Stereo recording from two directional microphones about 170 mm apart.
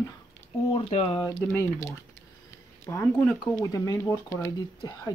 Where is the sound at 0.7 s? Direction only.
35° left (ahead or behind).